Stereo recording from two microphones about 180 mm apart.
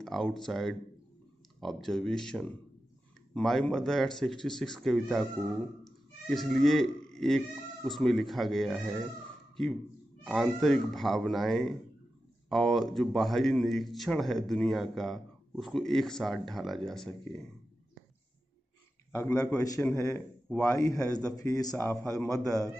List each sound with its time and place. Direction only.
0.0 s speech: centre (ahead or behind)
10.2 s speech: centre (ahead or behind)
19.1 s a man's voice: 15° left (ahead or behind)